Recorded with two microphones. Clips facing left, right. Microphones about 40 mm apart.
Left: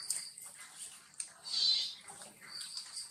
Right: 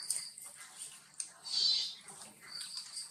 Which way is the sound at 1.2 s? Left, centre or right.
Centre.